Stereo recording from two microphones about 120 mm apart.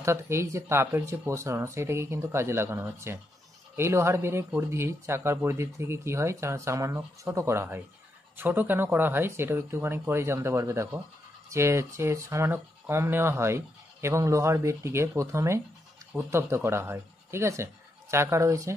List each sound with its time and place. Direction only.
0.0 s speech: 20° right (ahead or behind)